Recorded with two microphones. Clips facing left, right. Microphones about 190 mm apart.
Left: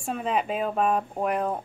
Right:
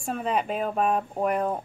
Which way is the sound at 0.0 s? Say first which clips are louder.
Even; centre (ahead or behind).